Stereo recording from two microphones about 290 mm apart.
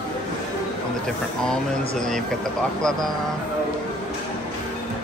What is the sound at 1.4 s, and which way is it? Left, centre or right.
Speech, centre.